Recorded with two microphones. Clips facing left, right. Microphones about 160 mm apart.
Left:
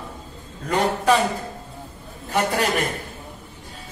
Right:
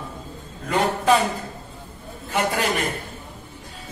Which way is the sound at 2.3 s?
40° left (ahead or behind).